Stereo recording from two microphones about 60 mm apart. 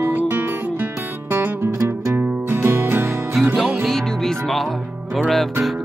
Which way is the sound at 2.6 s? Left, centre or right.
Right.